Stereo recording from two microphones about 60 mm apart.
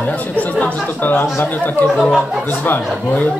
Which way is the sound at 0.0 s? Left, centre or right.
Left.